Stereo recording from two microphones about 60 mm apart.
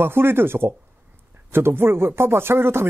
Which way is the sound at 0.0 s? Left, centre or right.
Right.